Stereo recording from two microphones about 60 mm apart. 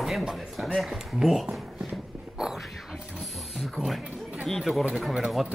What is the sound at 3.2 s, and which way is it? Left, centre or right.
Printer, centre.